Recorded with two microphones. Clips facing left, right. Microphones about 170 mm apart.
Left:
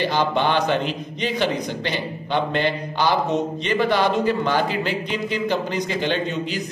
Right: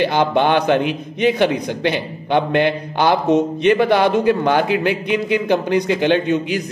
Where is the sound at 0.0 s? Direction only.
55° right (ahead or behind).